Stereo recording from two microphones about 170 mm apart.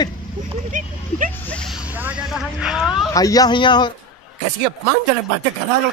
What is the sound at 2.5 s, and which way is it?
Speech, 5° right (ahead or behind).